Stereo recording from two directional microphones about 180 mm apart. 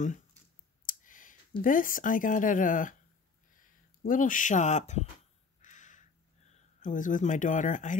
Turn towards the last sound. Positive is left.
turn(degrees=45)  # may be behind; listen again after turning